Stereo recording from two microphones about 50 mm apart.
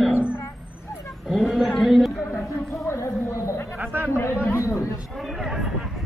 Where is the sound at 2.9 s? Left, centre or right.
Left.